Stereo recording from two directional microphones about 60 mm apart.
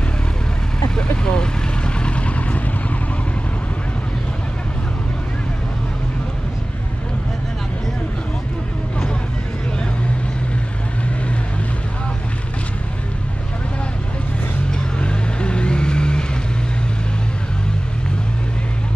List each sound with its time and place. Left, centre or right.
0.9 s vehicle: centre
14.7 s vehicle: centre